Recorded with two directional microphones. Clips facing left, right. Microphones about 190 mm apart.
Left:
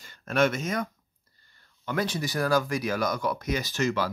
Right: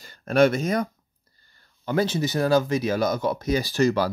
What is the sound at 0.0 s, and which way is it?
Speech, 35° right (ahead or behind).